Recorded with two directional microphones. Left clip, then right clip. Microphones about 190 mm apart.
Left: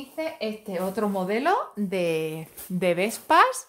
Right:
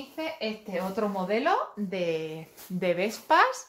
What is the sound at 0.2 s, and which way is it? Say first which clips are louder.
Speech: left 3 dB; 55° left (ahead or behind).